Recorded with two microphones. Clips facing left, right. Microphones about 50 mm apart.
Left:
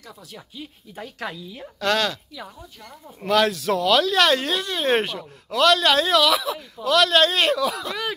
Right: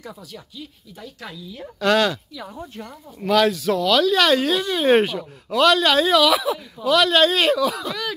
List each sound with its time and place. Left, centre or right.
0.9 s speech: left
1.6 s speech: centre
3.2 s speech: centre